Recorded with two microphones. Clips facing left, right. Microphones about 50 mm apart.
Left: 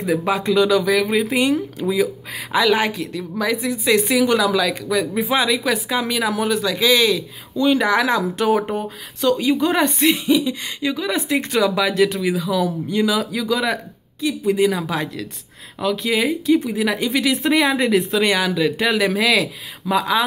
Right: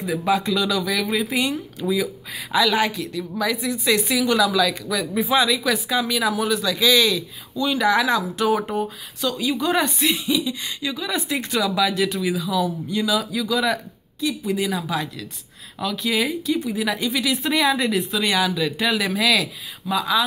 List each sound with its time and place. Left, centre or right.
0.0 s a woman's voice: left
15.8 s a woman's voice: left